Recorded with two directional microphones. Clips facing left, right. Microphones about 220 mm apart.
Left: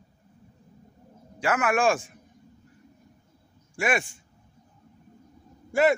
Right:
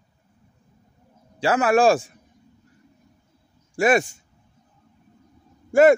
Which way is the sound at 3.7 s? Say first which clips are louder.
Right 8 dB; 40° right (ahead or behind).